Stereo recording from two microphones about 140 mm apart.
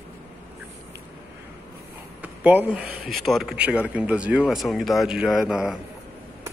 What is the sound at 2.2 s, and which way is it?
Speech, 10° right (ahead or behind).